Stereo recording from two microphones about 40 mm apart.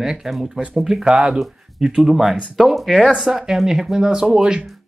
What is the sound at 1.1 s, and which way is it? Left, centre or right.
Speech, right.